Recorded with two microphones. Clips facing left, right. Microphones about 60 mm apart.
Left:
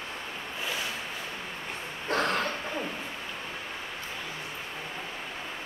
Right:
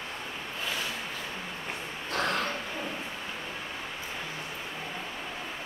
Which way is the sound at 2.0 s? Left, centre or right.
Left.